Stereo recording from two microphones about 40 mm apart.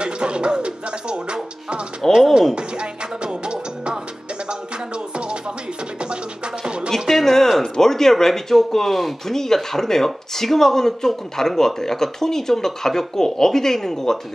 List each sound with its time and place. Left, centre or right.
0.0 s music: right
6.9 s a sound: centre
7.7 s speech: centre